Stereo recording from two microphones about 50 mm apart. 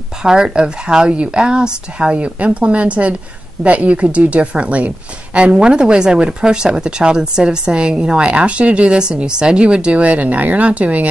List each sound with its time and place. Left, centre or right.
0.2 s a woman's voice: centre